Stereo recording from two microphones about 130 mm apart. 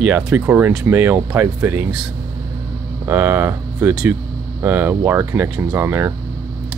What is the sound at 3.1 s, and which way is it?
Speech, 15° right (ahead or behind).